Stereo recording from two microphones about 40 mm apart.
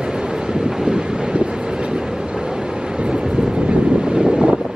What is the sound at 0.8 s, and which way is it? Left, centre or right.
Wind noise, right.